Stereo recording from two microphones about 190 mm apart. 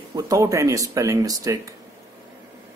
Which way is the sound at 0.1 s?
20° right (ahead or behind).